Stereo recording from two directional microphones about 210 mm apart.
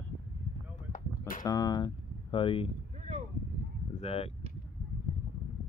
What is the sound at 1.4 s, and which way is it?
Speech, 20° left (ahead or behind).